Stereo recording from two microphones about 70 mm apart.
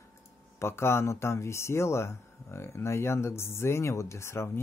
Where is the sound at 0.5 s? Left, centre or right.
Left.